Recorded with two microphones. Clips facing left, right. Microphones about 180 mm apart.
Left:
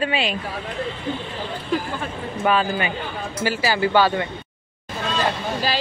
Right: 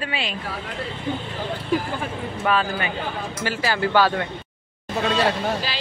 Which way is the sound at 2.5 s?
5° left (ahead or behind).